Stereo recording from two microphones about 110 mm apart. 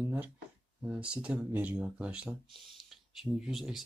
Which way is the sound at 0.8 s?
10° right (ahead or behind).